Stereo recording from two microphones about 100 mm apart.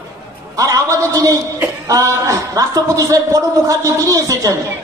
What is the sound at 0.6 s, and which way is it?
A man's voice, 35° right (ahead or behind).